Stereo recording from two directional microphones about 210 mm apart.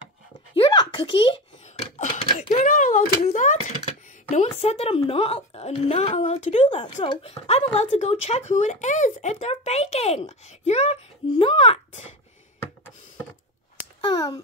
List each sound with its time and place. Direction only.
0.6 s a sound: 20° left (ahead or behind); by 3.7 s 35° left (ahead or behind)
4.3 s a woman's voice: 30° left (ahead or behind)
14.0 s speech: 20° left (ahead or behind)